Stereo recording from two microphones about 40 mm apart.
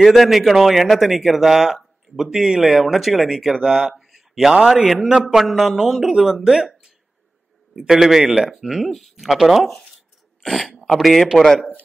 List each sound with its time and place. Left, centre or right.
0.0 s a man's voice: centre
4.0 s a sound: centre
4.8 s a man's voice: centre
7.9 s a man's voice: centre
9.7 s speech: centre
10.4 s speech: centre